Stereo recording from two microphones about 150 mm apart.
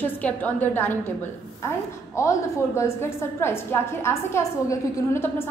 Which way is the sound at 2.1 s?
20° left (ahead or behind).